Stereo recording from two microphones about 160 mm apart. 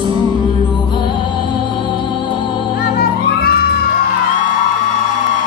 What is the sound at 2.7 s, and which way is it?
Music, 70° left (ahead or behind).